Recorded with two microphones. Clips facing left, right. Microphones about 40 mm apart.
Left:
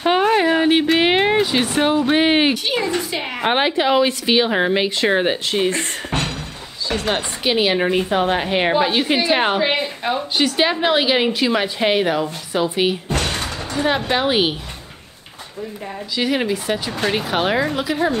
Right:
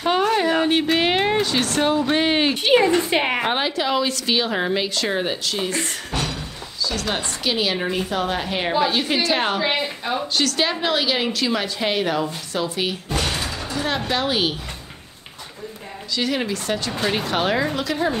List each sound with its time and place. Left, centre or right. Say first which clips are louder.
0.0 s a sound: left 3 dB; left
2.5 s a woman's voice: right 4 dB; right
3.4 s speech: left 5 dB; left
6.9 s speech: left 5 dB; left
13.2 s music: left 1 dB; left
13.7 s speech: left 5 dB; centre
16.2 s speech: left 4 dB; centre